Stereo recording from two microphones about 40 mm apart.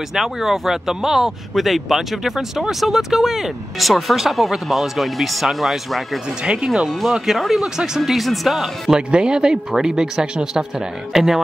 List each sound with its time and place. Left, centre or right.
0.1 s speech: centre
6.4 s speech: right
6.7 s speech: centre
7.7 s speech: centre
8.0 s speech: centre
8.9 s speech: right